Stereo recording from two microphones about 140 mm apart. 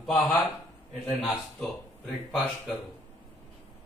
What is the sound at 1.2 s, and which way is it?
Speech, 5° left (ahead or behind).